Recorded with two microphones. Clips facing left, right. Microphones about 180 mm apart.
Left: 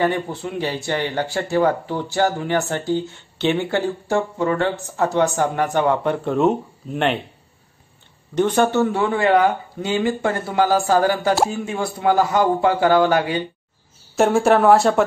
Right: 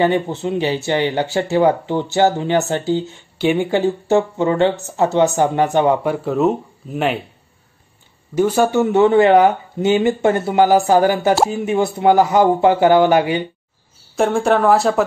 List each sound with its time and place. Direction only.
0.0 s speech: 20° right (ahead or behind)
6.0 s speech: 5° right (ahead or behind)
8.4 s speech: 5° right (ahead or behind)
8.9 s speech: 25° right (ahead or behind)
14.1 s speech: 5° left (ahead or behind)